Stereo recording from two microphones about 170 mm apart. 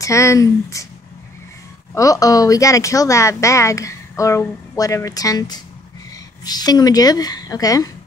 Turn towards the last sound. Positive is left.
turn(degrees=20)  # may be behind; listen again after turning